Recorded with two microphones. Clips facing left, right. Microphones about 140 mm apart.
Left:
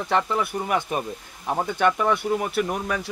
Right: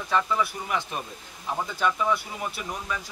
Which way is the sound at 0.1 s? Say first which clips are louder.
Left 2 dB; 55° left (ahead or behind).